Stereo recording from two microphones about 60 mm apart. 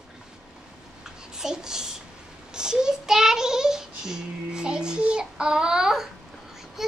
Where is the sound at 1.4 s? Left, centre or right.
Centre.